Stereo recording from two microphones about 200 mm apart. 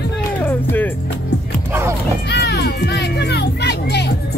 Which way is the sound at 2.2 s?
55° left (ahead or behind).